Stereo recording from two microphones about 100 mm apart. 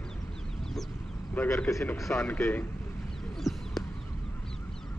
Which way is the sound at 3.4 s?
Centre (ahead or behind).